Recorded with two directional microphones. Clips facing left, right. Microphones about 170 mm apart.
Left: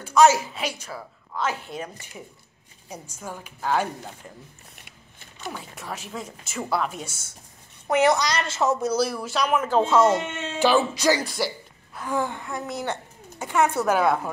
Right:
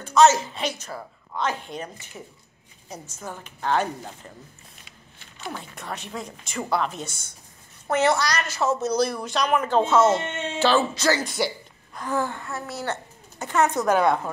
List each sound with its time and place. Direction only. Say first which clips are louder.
0.0 s speech: even; 10° left (ahead or behind)
5.6 s a woman's voice: right 1 dB; 5° left (ahead or behind); by 8.7 s 20° left (ahead or behind)
8.8 s speech: even; 5° left (ahead or behind)
11.2 s a woman's voice: right 2 dB; centre (ahead or behind)